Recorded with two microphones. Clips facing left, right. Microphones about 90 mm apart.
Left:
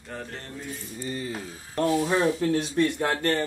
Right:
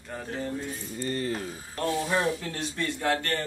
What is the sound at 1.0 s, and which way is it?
Speech, 10° left (ahead or behind).